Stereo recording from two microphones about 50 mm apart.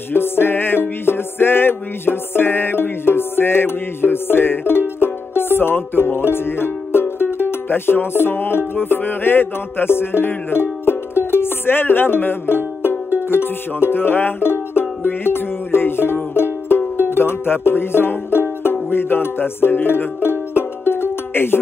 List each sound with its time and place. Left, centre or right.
0.1 s music: left